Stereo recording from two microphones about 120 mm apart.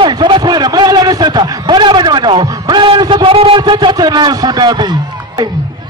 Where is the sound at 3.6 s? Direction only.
40° right (ahead or behind).